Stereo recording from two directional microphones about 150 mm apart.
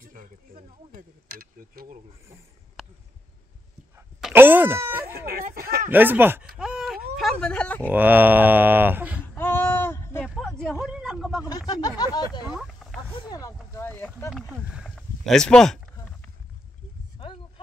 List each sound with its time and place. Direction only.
0.0 s speech: 65° right (ahead or behind); by 2.0 s 80° right
4.3 s speech: 15° right (ahead or behind)
5.3 s speech: 90° right
5.9 s speech: 15° right (ahead or behind)
6.6 s a sound: centre (ahead or behind)
7.9 s speech: 10° right (ahead or behind)
9.2 s a sound: 15° left (ahead or behind)
10.2 s a sound: centre (ahead or behind)
11.4 s speech: 25° left (ahead or behind)
12.4 s a sound: 5° right (ahead or behind)
13.3 s speech: 20° left (ahead or behind)
14.5 s speech: 5° right (ahead or behind)